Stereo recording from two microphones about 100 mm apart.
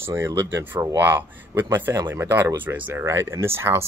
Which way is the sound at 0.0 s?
25° right (ahead or behind).